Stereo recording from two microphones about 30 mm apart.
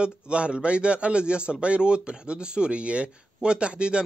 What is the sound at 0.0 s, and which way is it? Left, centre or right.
Speech, right.